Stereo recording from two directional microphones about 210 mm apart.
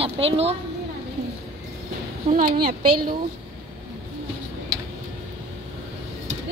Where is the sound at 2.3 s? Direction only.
40° right (ahead or behind).